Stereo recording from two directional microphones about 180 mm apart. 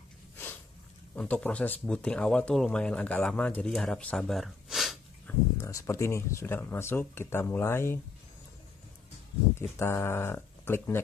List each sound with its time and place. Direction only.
1.1 s speech: 10° left (ahead or behind)
5.6 s speech: 15° left (ahead or behind)
9.6 s speech: 15° left (ahead or behind)